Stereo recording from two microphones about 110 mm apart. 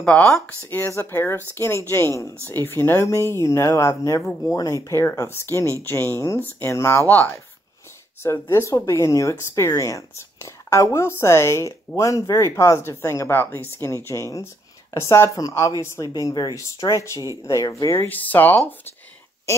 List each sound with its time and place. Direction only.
0.0 s speech: 10° left (ahead or behind)
0.7 s speech: 20° left (ahead or behind)
16.2 s speech: 35° left (ahead or behind)
17.9 s speech: 15° left (ahead or behind)